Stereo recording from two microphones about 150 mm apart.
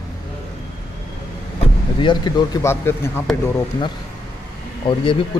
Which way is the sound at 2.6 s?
15° left (ahead or behind).